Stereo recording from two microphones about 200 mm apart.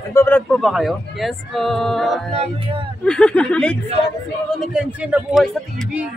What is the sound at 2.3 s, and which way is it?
Music, 30° right (ahead or behind).